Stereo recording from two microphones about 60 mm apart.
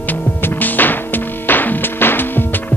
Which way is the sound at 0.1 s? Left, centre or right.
Left.